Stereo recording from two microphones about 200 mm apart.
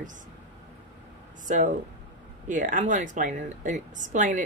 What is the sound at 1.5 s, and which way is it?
A woman's voice, 40° right (ahead or behind).